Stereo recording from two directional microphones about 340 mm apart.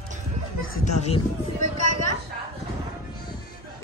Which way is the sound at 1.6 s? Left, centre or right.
Left.